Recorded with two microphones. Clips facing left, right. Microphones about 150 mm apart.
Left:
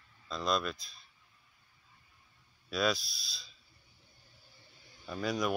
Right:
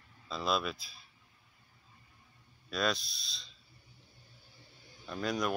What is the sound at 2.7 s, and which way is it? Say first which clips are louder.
Speech: left 2 dB; centre (ahead or behind).